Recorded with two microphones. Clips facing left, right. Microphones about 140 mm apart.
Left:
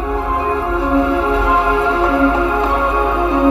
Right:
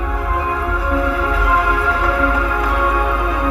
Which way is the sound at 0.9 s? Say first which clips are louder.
Left 5 dB; 25° left (ahead or behind).